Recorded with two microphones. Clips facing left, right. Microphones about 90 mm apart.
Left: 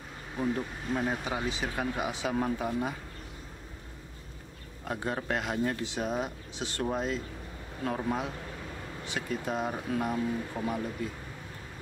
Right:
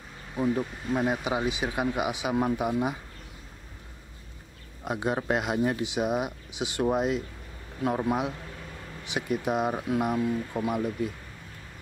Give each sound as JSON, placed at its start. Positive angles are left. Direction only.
{"t": 0.4, "sound": "speech", "side_deg": -15}
{"t": 4.8, "sound": "speech", "side_deg": -20}